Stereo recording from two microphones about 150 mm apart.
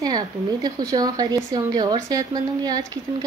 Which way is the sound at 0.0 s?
25° right (ahead or behind).